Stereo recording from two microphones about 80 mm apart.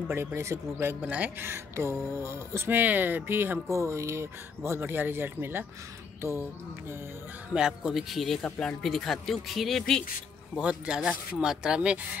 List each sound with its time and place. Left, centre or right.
0.1 s speech: right
1.0 s speech: centre
1.5 s speech: right
3.7 s speech: right
7.5 s speech: centre
8.4 s speech: centre
10.6 s speech: centre